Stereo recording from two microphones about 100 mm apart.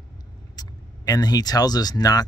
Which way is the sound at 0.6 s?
40° left (ahead or behind).